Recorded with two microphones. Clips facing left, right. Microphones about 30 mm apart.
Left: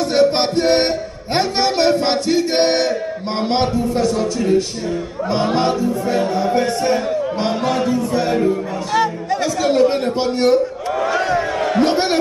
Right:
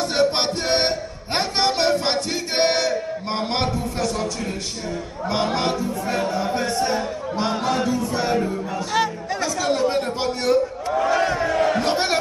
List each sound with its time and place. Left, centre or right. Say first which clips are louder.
0.6 s music: left 6 dB; left
1.9 s a man's voice: left 5 dB; left
2.2 s music: left 6 dB; left
3.3 s a man's voice: left 6 dB; left
4.0 s speech: left 6 dB; left
5.5 s a man's voice: left 6 dB; left
7.3 s a man's voice: left 3 dB; centre
10.2 s a sound: left 5 dB; left
11.7 s a man's voice: left 5 dB; left